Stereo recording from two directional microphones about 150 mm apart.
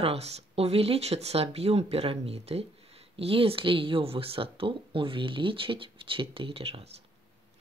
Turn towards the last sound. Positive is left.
turn(degrees=-40)  # may be behind; listen again after turning